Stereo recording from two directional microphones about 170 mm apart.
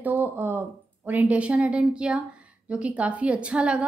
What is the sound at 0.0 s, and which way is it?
A woman's voice, 10° right (ahead or behind).